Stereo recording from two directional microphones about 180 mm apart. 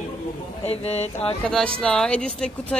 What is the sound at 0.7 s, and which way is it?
Speech, 35° left (ahead or behind).